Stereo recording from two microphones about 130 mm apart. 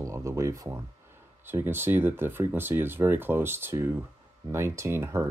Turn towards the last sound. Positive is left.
turn(degrees=-20)  # may be behind; listen again after turning